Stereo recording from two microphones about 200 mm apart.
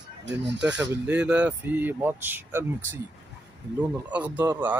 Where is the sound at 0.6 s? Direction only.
5° right (ahead or behind).